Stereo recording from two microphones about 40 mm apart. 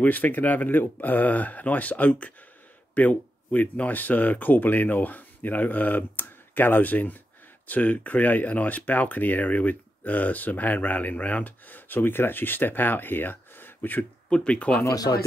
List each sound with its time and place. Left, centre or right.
0.0 s speech: left
14.3 s speech: left